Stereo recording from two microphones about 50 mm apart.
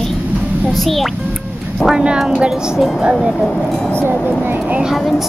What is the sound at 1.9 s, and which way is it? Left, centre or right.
Speech, centre.